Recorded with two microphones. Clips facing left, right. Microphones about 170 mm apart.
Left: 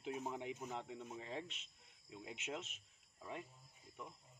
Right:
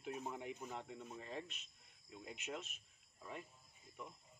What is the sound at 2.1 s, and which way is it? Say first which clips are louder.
Speech: left 1 dB; 20° left (ahead or behind).